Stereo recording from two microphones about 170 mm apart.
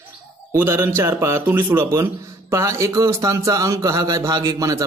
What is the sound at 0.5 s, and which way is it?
A man's voice, 15° right (ahead or behind).